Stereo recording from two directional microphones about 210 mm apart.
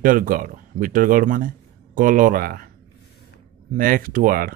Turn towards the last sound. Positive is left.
turn(degrees=-45)  # may be behind; listen again after turning